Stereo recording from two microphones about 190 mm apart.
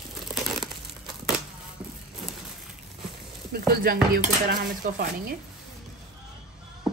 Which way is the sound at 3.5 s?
55° right (ahead or behind).